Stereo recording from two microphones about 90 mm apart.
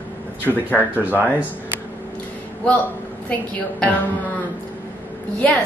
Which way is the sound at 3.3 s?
15° left (ahead or behind).